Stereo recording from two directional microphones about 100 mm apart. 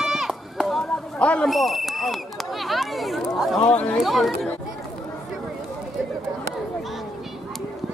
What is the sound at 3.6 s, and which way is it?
Speech, 15° left (ahead or behind).